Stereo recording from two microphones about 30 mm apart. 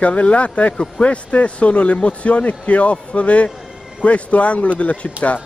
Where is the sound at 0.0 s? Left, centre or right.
Left.